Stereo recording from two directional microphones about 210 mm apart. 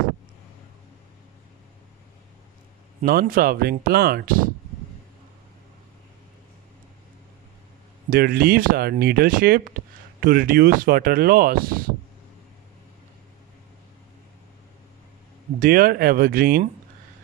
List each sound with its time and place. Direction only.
3.0 s speech: 45° right (ahead or behind)
8.1 s speech: 45° right (ahead or behind)
15.6 s speech: 45° right (ahead or behind)